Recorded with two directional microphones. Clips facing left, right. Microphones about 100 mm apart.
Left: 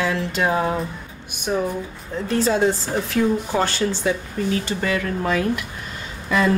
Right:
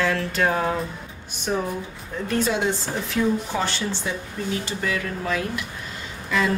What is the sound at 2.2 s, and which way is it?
Speech, 35° left (ahead or behind).